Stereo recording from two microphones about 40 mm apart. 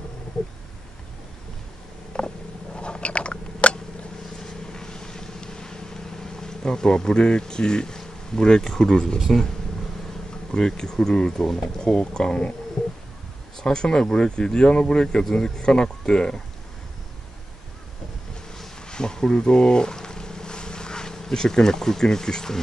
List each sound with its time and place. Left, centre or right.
2.1 s biting: left
4.4 s vehicle: centre
10.5 s speech: centre
13.6 s speech: centre
18.9 s a sound: centre